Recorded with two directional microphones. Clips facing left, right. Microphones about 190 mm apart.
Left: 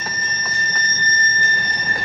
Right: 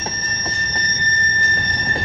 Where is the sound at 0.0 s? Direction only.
30° right (ahead or behind).